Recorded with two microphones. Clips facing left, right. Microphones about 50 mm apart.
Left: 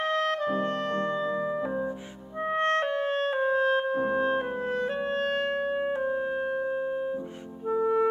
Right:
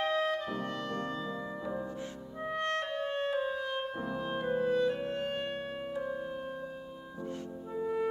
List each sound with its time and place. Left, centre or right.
0.1 s clarinet: left
2.5 s clarinet: left
5.9 s music: left